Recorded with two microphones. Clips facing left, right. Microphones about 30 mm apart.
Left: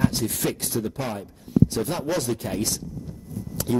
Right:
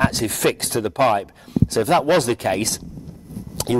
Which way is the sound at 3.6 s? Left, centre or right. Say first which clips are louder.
Right 4 dB; right.